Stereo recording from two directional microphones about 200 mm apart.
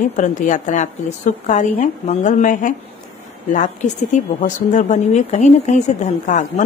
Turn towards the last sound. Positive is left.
turn(degrees=35)  # may be behind; listen again after turning